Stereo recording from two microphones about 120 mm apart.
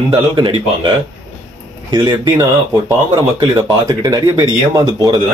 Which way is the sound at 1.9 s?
35° right (ahead or behind).